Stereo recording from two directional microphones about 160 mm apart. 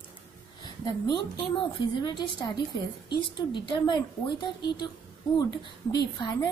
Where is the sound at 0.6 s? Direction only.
25° left (ahead or behind).